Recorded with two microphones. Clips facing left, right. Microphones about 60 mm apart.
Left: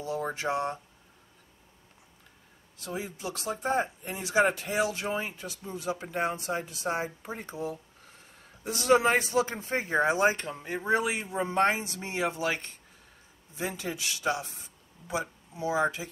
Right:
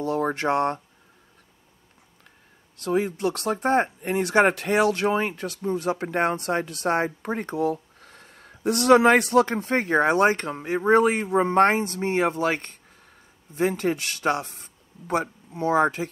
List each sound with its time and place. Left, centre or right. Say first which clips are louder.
0.0 s speech: right 7 dB; right
2.8 s speech: right 12 dB; right
10.8 s speech: right 9 dB; right